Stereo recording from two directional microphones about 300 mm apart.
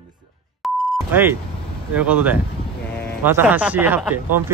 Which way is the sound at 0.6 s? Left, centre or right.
Centre.